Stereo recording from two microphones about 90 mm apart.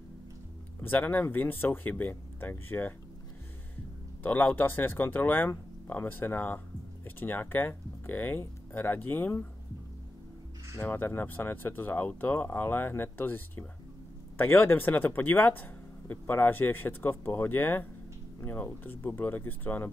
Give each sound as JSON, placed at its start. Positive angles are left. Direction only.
{"t": 0.7, "sound": "speech", "side_deg": 20}
{"t": 10.8, "sound": "speech", "side_deg": 20}